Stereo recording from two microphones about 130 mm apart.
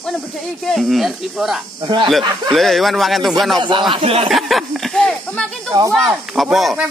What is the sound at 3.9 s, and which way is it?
Speech, 50° right (ahead or behind).